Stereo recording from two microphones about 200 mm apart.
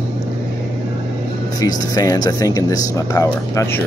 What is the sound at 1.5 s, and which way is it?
Speech, 20° left (ahead or behind).